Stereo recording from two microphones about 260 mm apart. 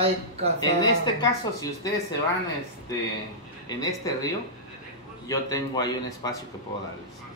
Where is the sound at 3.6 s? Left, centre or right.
Centre.